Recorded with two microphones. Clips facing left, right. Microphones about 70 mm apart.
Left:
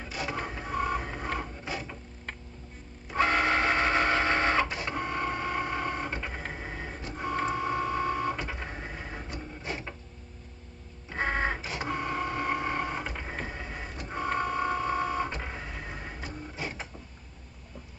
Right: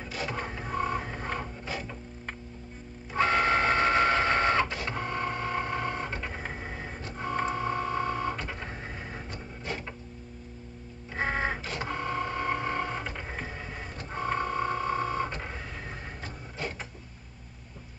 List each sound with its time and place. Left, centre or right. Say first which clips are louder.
0.0 s printer: even; centre
3.1 s a sound: right 1 dB; centre
4.2 s printer: right 1 dB; centre
6.3 s vehicle: even; centre
7.1 s printer: even; centre
11.1 s printer: left 1 dB; centre
11.6 s printer: even; centre
13.3 s vehicle: left 1 dB; centre